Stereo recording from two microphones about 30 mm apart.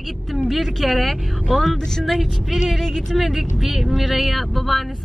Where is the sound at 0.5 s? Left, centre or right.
Centre.